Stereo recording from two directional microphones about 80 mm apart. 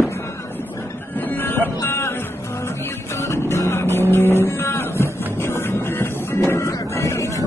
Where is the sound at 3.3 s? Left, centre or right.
Left.